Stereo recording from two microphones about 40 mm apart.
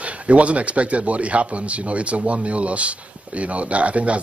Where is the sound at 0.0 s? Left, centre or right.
Right.